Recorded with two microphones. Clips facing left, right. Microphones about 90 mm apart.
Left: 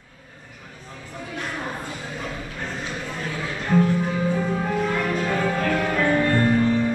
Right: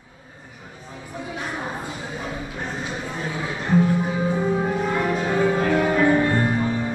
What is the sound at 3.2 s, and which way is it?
Music, 15° right (ahead or behind).